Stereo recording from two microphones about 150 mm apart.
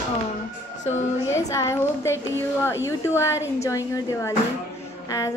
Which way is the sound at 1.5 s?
20° left (ahead or behind).